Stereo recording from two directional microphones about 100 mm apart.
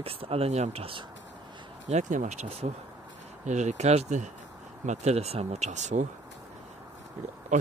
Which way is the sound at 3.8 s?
90° right.